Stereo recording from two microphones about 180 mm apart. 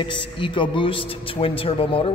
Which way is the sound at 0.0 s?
25° left (ahead or behind).